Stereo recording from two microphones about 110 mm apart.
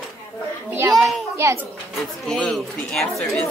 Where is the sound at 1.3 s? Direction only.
25° right (ahead or behind).